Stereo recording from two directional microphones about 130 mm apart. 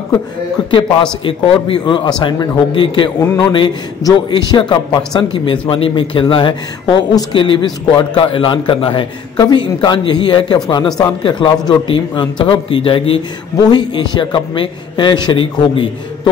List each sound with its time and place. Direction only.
0.6 s speech: 35° left (ahead or behind)
13.6 s speech: 35° left (ahead or behind)